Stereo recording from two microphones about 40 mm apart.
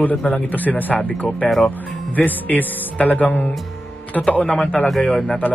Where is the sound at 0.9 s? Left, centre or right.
Centre.